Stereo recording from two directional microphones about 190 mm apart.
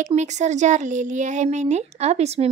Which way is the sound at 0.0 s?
40° right (ahead or behind).